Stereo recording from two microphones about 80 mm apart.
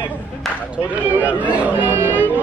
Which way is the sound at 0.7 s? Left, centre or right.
Centre.